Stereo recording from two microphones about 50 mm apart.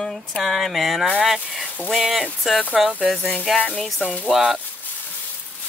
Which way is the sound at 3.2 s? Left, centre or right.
Left.